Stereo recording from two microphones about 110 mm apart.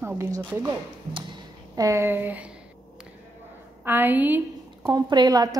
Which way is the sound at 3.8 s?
20° right (ahead or behind).